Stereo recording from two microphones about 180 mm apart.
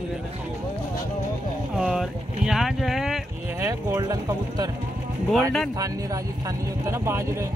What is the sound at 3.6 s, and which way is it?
Speech, 15° right (ahead or behind).